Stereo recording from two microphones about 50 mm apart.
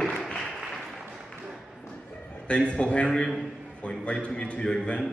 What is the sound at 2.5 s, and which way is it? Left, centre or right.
Speech, left.